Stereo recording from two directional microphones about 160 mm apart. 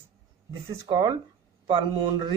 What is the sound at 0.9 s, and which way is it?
Speech, 30° right (ahead or behind).